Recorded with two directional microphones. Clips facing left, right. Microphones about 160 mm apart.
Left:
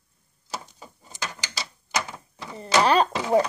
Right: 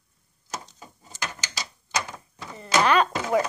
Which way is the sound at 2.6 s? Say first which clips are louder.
Left 1 dB; 35° left (ahead or behind).